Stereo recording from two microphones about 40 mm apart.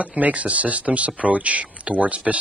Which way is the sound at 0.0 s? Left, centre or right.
Right.